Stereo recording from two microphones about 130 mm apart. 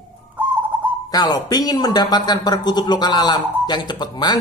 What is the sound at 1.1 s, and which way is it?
A woman's voice, 30° left (ahead or behind).